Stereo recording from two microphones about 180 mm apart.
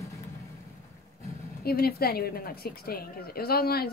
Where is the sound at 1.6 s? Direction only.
60° left (ahead or behind).